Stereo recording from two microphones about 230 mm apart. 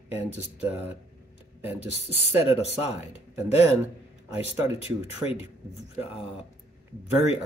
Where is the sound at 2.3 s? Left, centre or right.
Left.